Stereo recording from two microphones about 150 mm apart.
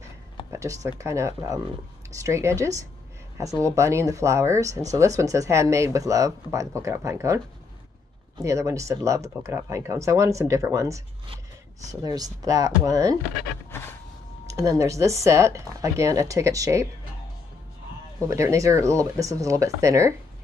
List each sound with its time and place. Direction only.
0.5 s speech: 20° right (ahead or behind)
13.7 s a sound: 15° left (ahead or behind)
14.5 s speech: 25° right (ahead or behind)
18.2 s speech: 20° right (ahead or behind)